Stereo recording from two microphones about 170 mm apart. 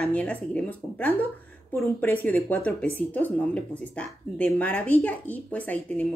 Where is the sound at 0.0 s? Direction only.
10° left (ahead or behind).